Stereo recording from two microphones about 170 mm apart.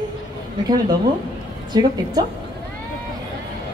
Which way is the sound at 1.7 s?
25° right (ahead or behind).